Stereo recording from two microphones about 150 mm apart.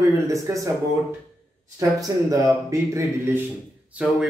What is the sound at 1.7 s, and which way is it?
A man's voice, 20° right (ahead or behind).